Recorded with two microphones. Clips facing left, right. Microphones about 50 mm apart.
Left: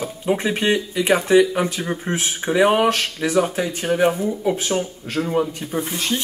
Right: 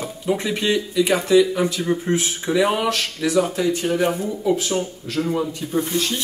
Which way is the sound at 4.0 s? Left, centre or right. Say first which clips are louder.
Left 3 dB; left.